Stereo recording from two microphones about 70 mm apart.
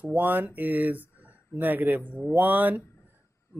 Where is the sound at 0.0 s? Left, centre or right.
Right.